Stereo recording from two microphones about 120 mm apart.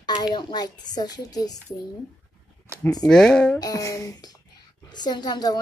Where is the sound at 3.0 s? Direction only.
5° left (ahead or behind).